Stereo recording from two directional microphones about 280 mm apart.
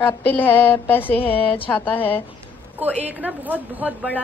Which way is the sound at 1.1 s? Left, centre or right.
Centre.